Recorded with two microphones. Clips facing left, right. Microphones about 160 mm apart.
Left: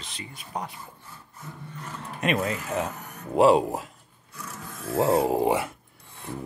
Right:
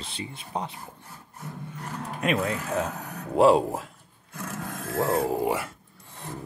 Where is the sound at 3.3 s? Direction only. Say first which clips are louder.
Even; centre (ahead or behind).